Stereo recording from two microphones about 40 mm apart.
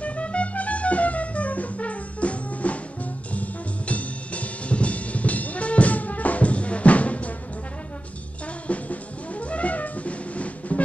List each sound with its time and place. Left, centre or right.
0.0 s music: left
8.6 s music: left